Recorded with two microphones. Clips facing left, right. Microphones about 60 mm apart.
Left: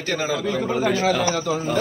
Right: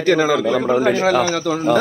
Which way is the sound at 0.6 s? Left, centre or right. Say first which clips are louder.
Right 5 dB; right.